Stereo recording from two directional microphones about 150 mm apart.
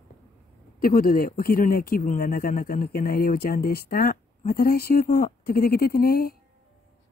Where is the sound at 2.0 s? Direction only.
70° left (ahead or behind); by 6.4 s 90° left.